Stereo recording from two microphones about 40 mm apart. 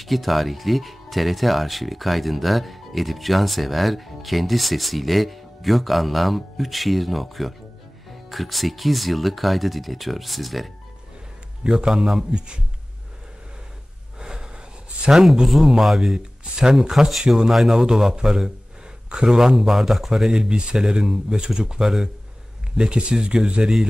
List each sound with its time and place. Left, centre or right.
0.0 s speech: centre
11.6 s speech: centre
14.1 s snort: centre
15.1 s speech: right
15.4 s speech: centre
20.3 s speech: right
21.8 s speech: centre
22.8 s speech: right